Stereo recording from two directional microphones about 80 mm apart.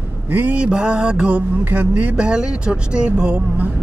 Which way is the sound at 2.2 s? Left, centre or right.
Centre.